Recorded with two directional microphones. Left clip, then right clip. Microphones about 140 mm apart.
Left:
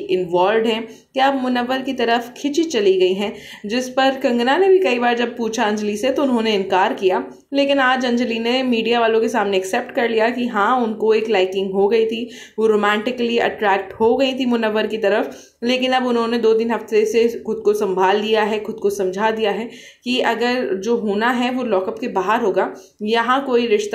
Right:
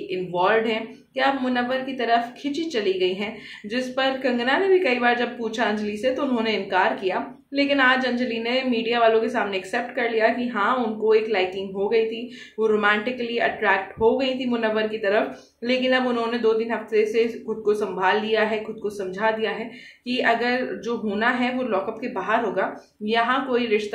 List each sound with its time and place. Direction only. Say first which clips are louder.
0.1 s speech: left 5 dB; 40° left (ahead or behind)